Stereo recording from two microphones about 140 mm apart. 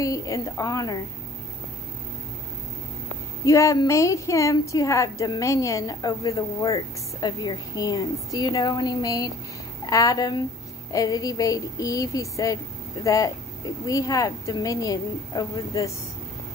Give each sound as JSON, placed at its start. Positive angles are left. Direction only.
{"t": 0.0, "sound": "a woman's voice", "side_deg": 25}
{"t": 3.4, "sound": "a woman's voice", "side_deg": 20}